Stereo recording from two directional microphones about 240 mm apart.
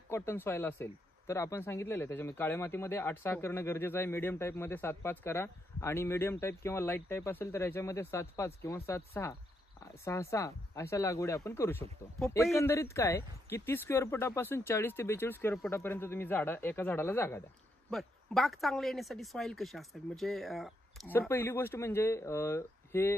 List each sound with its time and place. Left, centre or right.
0.1 s speech: centre